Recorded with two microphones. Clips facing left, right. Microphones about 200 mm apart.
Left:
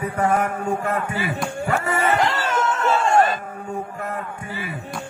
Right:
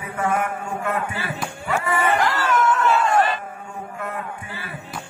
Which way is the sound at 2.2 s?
25° left (ahead or behind).